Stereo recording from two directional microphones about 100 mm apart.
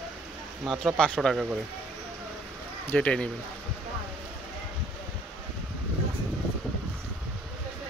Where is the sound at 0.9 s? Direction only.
10° left (ahead or behind).